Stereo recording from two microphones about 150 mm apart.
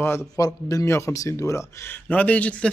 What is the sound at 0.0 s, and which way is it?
Speech, 15° left (ahead or behind).